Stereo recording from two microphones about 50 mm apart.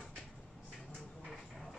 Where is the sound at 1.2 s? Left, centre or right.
Centre.